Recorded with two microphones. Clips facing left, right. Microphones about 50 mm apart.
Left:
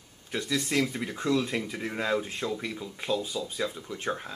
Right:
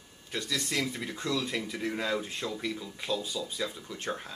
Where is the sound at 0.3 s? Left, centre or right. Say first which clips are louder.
Left 4 dB; centre.